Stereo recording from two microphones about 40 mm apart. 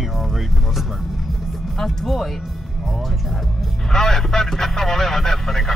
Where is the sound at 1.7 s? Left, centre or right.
Centre.